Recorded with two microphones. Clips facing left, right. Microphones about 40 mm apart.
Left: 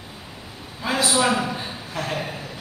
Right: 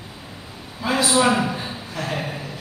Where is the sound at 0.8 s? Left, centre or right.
Centre.